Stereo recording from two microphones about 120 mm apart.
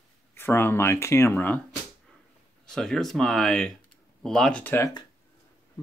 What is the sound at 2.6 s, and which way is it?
Speech, 5° left (ahead or behind).